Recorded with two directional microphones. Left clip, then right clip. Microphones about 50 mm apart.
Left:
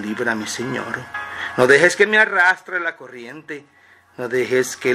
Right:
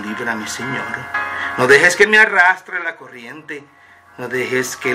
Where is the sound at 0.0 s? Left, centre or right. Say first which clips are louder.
Even; left.